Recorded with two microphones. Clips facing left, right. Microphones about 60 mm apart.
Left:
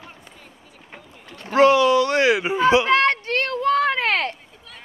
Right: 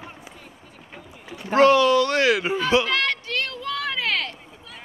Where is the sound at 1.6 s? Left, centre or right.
Centre; by 4.4 s left.